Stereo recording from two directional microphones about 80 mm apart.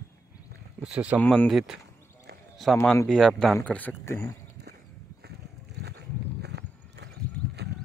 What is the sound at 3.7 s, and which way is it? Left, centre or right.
Speech, left.